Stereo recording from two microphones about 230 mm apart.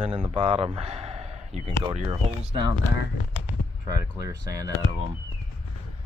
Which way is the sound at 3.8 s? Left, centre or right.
Centre.